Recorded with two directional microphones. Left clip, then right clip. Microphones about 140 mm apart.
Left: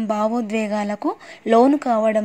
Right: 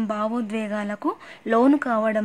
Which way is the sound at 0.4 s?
15° left (ahead or behind).